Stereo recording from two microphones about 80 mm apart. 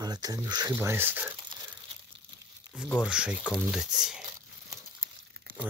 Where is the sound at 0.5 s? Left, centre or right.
Right.